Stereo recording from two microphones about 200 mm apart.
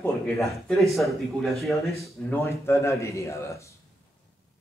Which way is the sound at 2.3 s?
15° left (ahead or behind).